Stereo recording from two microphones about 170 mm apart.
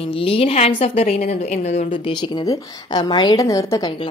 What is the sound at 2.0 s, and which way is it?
A woman's voice, 25° left (ahead or behind).